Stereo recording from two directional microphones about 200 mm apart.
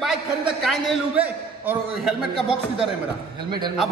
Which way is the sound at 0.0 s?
Centre (ahead or behind).